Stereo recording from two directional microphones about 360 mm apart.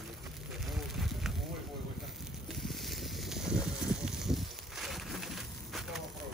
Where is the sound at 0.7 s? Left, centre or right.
Centre.